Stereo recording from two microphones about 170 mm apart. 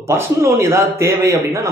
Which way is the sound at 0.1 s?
15° right (ahead or behind).